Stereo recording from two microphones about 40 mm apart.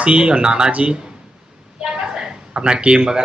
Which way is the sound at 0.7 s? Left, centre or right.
Right.